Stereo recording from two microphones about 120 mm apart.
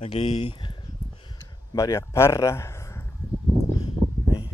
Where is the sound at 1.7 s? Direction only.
25° left (ahead or behind).